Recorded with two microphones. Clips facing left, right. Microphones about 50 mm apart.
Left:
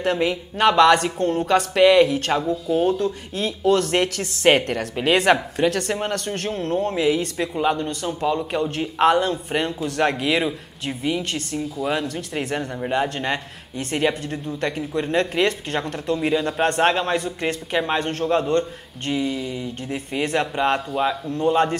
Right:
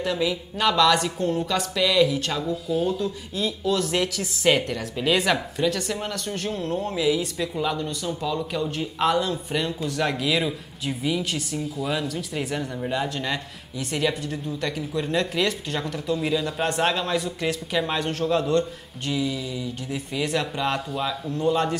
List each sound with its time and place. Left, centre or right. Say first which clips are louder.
0.0 s speech: left 3 dB; left
2.9 s speech: left 4 dB; left
6.5 s speech: left 5 dB; left
12.5 s speech: left 5 dB; left